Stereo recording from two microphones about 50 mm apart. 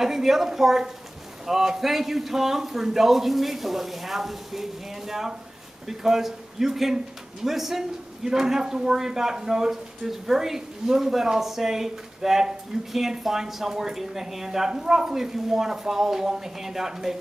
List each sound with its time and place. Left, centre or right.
0.0 s a man's voice: centre